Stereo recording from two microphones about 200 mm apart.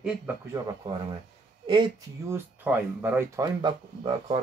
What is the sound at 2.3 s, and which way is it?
A man's voice, 10° right (ahead or behind).